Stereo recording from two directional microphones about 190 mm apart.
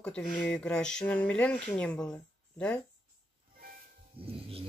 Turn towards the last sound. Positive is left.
turn(degrees=-30)  # may be behind; listen again after turning